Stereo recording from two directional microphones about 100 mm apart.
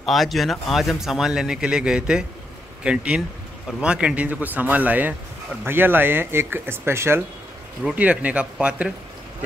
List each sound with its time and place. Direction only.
0.0 s speech: centre (ahead or behind); by 7.2 s 25° right (ahead or behind)
7.8 s speech: 15° right (ahead or behind)